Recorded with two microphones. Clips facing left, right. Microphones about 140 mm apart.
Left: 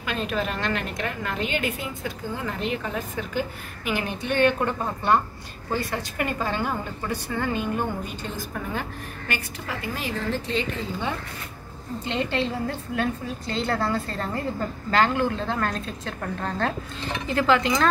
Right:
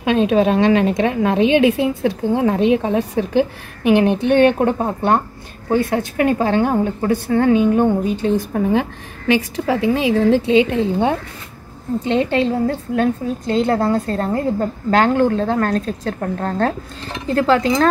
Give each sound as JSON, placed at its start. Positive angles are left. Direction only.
{"t": 0.0, "sound": "a woman's voice", "side_deg": -90}
{"t": 3.8, "sound": "a woman's voice", "side_deg": -70}
{"t": 9.3, "sound": "speech", "side_deg": -90}
{"t": 12.1, "sound": "a woman's voice", "side_deg": -55}